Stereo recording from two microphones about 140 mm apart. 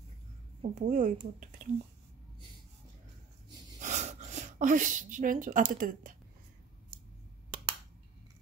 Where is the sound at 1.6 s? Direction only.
75° right (ahead or behind).